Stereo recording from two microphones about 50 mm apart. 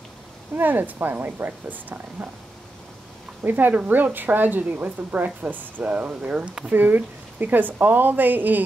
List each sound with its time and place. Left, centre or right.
0.6 s a woman's voice: right
3.4 s a woman's voice: right
6.7 s a woman's voice: right